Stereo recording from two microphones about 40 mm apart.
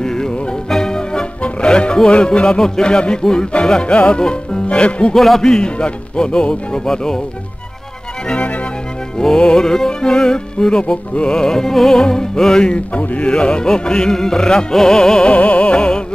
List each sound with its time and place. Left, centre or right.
0.0 s music: centre
3.8 s music: left
5.1 s speech: centre
5.4 s music: centre
9.2 s music: centre
12.9 s music: left
13.3 s music: left
15.2 s music: left